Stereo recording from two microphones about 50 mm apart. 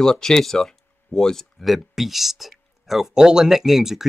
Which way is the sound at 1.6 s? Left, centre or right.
Centre.